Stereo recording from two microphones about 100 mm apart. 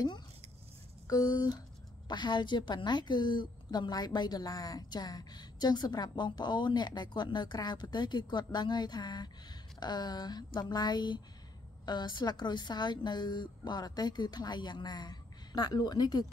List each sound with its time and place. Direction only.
1.0 s a woman's voice: 40° left (ahead or behind)